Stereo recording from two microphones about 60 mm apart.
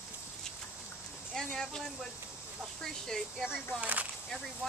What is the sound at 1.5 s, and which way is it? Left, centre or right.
Speech, centre.